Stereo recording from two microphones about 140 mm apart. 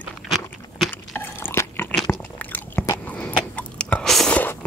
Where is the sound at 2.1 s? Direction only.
15° left (ahead or behind).